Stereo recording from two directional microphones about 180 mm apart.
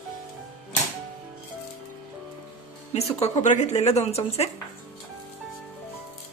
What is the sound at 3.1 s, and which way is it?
A woman's voice, 35° left (ahead or behind).